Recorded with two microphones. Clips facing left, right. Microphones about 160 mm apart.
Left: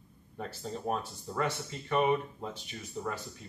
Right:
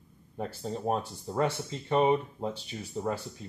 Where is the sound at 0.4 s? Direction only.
25° right (ahead or behind).